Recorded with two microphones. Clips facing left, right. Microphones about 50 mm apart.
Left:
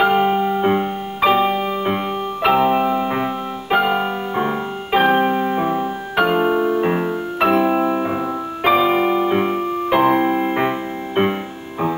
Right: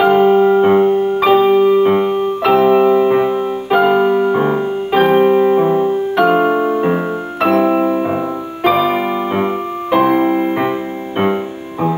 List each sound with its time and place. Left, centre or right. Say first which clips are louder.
0.0 s keyboard: right 5 dB; centre
0.4 s music: right 8 dB; centre
6.4 s music: right 3 dB; centre
6.8 s music: right 3 dB; centre